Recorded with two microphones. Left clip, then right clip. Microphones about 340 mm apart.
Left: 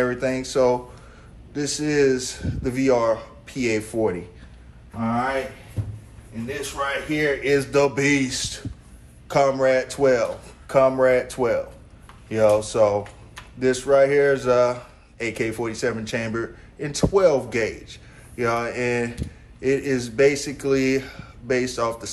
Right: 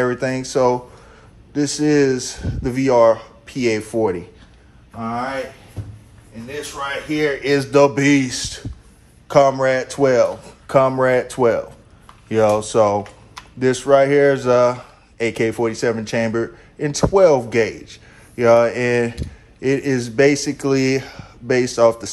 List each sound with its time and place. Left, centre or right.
0.0 s speech: right
7.2 s speech: right